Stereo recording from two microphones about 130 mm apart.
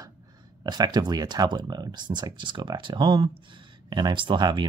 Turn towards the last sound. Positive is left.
turn(degrees=-35)  # may be behind; listen again after turning